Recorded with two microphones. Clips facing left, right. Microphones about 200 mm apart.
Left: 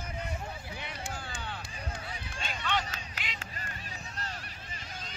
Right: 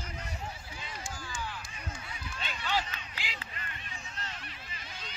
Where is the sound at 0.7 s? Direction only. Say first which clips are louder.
Left 3 dB; 65° left (ahead or behind).